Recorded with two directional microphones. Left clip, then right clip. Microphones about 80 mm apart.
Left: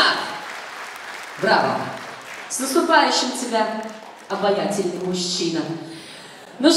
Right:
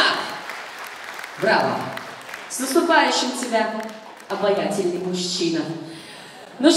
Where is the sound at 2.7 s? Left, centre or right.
Centre.